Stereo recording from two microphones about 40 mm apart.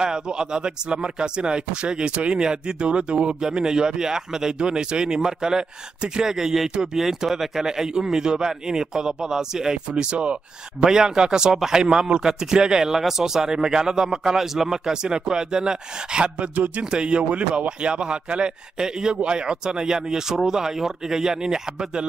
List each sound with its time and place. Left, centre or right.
0.0 s a man's voice: right
16.5 s speech: right
16.9 s a man's voice: right